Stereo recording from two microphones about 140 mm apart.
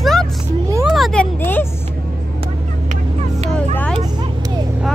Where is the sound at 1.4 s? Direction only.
15° left (ahead or behind).